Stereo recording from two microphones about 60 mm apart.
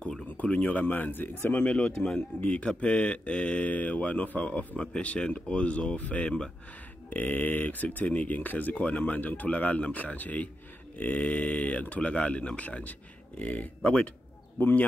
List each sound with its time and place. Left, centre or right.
0.4 s speech: left
1.6 s speech: centre
7.1 s speech: left
14.6 s speech: left